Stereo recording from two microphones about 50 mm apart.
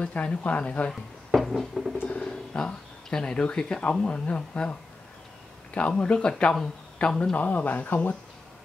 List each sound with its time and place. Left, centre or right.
0.0 s speech: left
1.3 s a sound: centre
2.0 s speech: centre
5.8 s speech: left
7.3 s speech: left